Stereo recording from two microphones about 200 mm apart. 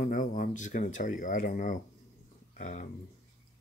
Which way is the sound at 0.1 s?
40° left (ahead or behind).